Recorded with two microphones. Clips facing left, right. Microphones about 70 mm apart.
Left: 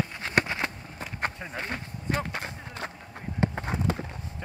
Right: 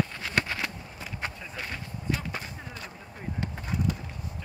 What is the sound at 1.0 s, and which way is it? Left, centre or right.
Run, left.